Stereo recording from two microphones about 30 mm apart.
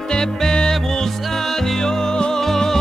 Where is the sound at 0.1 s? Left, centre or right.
Left.